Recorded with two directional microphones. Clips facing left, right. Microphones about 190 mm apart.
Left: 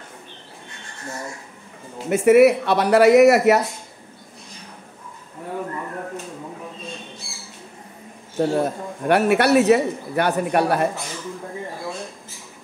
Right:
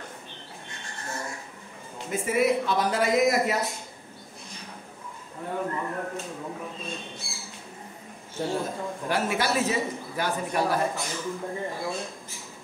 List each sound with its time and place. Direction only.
2.0 s a man's voice: 70° left (ahead or behind)
8.4 s a man's voice: 65° left (ahead or behind)